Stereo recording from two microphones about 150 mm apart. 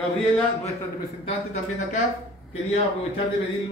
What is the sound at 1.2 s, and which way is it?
Speech, 50° left (ahead or behind).